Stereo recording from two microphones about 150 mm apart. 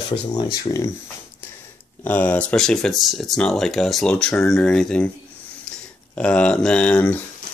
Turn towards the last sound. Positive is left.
turn(degrees=10)  # may be behind; listen again after turning